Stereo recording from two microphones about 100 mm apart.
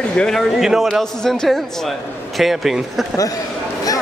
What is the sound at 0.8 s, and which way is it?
A man's voice, 5° left (ahead or behind).